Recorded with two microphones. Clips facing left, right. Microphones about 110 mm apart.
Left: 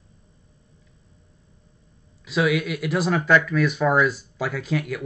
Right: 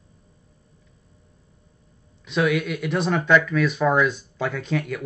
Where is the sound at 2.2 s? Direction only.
5° left (ahead or behind).